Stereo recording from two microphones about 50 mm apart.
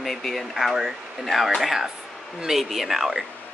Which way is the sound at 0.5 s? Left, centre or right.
Centre.